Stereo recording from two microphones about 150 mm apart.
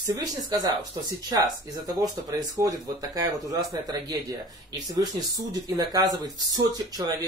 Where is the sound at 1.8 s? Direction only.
25° right (ahead or behind).